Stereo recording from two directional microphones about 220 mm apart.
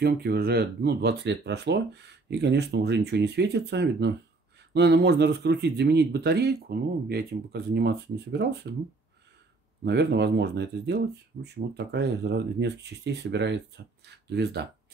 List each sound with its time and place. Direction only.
0.0 s speech: 45° right (ahead or behind)
9.8 s speech: 50° right (ahead or behind)